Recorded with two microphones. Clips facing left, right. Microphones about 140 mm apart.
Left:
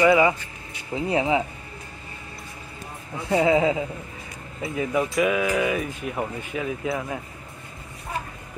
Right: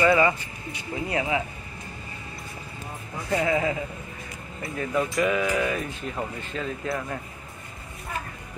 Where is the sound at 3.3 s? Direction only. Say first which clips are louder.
Left 5 dB; 20° left (ahead or behind).